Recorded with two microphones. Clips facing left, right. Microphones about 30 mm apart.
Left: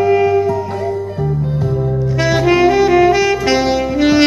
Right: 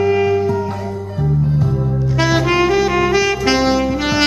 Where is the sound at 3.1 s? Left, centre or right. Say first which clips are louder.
Left 2 dB; centre.